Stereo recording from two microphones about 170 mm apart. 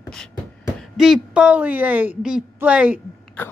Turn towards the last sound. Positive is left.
turn(degrees=10)  # may be behind; listen again after turning